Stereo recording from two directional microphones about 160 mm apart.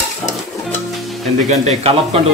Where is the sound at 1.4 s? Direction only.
45° right (ahead or behind).